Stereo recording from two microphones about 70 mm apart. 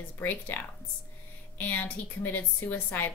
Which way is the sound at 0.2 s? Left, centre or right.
Left.